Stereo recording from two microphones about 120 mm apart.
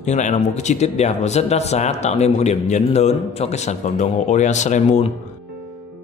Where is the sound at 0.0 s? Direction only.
75° left (ahead or behind).